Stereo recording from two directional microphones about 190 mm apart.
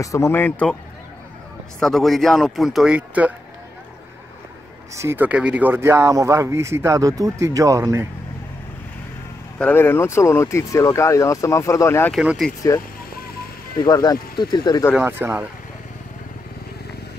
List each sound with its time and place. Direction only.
0.0 s speech: 15° left (ahead or behind)
1.8 s speech: centre (ahead or behind)
4.9 s speech: 10° right (ahead or behind)
9.6 s speech: 10° left (ahead or behind)
12.1 s speech: centre (ahead or behind)
13.8 s speech: 20° left (ahead or behind)
15.0 s speech: 10° right (ahead or behind)